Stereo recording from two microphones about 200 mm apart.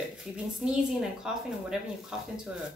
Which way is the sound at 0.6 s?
5° right (ahead or behind).